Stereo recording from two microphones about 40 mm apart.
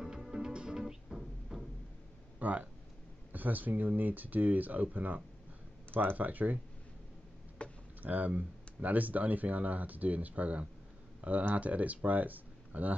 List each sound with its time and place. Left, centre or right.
0.3 s music: centre
2.3 s speech: right
7.6 s a sound: left
8.0 s speech: right
11.1 s a sound: right
11.5 s speech: right